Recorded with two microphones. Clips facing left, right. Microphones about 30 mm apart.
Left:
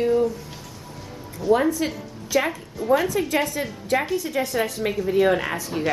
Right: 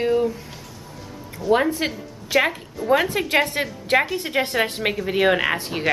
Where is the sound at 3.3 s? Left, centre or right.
Right.